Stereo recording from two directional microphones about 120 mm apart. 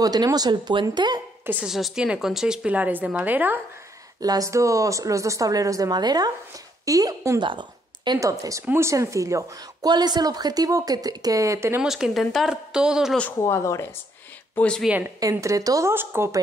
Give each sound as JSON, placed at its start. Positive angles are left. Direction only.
{"t": 0.0, "sound": "speech", "side_deg": -35}
{"t": 1.4, "sound": "a woman's voice", "side_deg": -15}
{"t": 4.2, "sound": "a woman's voice", "side_deg": -30}
{"t": 8.2, "sound": "a woman's voice", "side_deg": -30}
{"t": 11.8, "sound": "speech", "side_deg": -5}
{"t": 13.4, "sound": "speech", "side_deg": 25}
{"t": 14.5, "sound": "speech", "side_deg": 10}
{"t": 14.9, "sound": "a woman's voice", "side_deg": -15}
{"t": 15.1, "sound": "a woman's voice", "side_deg": -30}